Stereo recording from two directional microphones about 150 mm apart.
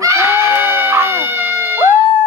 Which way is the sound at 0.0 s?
20° right (ahead or behind).